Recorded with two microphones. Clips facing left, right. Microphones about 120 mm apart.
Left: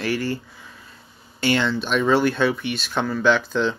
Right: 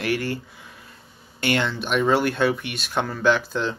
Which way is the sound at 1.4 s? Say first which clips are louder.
Left 2 dB; 55° right (ahead or behind).